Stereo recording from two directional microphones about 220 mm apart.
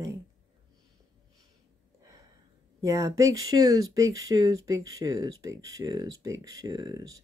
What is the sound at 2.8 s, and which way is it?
Speech, 15° right (ahead or behind).